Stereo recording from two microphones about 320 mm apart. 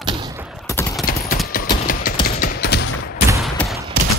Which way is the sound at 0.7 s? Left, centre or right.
Centre.